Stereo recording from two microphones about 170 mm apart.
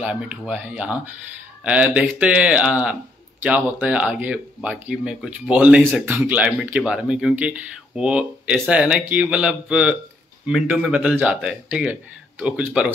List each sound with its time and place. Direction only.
0.0 s speech: 5° right (ahead or behind)